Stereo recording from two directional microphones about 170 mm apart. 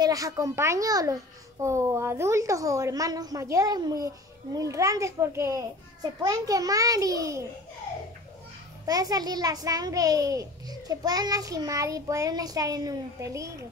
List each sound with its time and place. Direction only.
0.0 s a child's voice: 20° right (ahead or behind)
8.8 s a child's voice: 20° right (ahead or behind)